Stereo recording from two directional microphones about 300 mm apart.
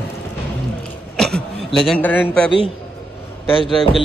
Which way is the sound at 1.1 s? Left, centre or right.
Centre.